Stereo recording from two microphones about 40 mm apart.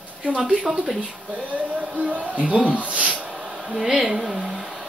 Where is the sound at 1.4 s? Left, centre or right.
Right.